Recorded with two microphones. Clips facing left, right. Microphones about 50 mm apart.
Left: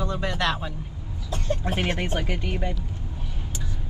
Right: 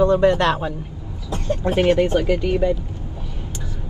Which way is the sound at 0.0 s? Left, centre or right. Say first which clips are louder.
Right 11 dB; right.